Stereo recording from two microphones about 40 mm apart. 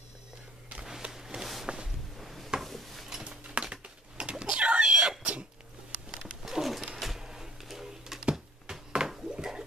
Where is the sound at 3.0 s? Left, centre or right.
Centre.